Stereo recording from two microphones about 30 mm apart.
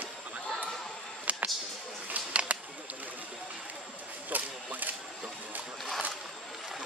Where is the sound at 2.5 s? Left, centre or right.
Right.